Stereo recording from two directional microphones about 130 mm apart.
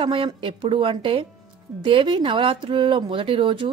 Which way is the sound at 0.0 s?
40° right (ahead or behind).